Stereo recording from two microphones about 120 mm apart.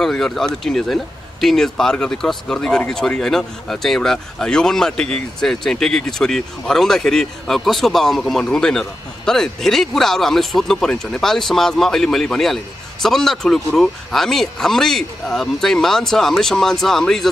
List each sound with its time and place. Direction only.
0.0 s speech: 5° left (ahead or behind)